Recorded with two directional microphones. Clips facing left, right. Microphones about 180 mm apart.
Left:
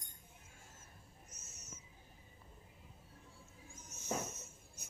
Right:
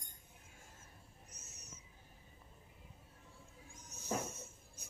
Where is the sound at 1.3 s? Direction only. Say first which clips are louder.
Left 1 dB; 35° right (ahead or behind).